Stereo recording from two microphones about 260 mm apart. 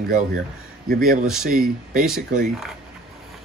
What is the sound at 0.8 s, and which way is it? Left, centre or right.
Speech, right.